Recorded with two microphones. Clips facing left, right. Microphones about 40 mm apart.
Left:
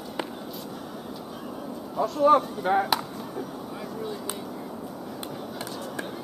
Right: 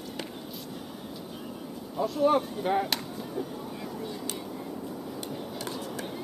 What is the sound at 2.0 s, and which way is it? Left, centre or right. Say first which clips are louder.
Speech: left 4 dB; centre.